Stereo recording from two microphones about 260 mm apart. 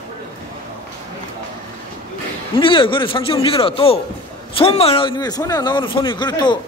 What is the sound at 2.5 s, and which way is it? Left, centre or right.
A man's voice, centre.